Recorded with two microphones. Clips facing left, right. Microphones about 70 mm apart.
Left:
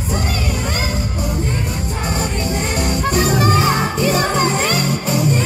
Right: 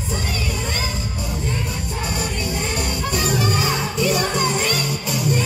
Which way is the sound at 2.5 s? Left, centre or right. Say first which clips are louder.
Left 4 dB; left.